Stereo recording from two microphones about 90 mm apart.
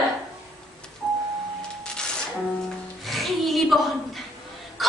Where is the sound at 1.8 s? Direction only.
10° left (ahead or behind).